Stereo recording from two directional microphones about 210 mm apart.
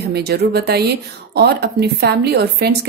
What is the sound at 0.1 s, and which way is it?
Speech, 50° right (ahead or behind).